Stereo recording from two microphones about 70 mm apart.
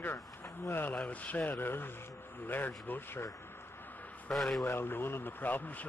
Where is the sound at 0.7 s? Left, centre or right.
Left.